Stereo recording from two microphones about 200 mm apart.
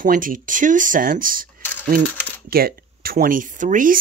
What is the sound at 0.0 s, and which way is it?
Speech, 45° right (ahead or behind).